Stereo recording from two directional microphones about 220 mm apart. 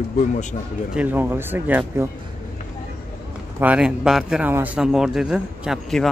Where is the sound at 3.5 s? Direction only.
5° right (ahead or behind).